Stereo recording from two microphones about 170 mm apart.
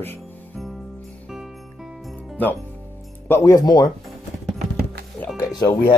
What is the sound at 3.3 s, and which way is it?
Speech, 15° left (ahead or behind).